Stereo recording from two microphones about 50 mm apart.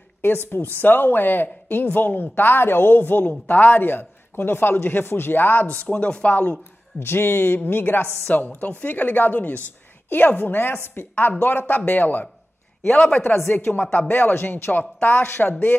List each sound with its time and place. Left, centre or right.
0.2 s speech: left
7.0 s speech: left
8.3 s speech: left
12.9 s speech: left
13.6 s speech: left